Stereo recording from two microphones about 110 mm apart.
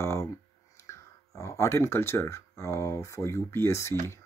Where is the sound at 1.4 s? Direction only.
25° left (ahead or behind).